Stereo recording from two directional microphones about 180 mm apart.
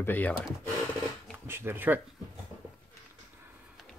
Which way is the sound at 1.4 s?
15° right (ahead or behind).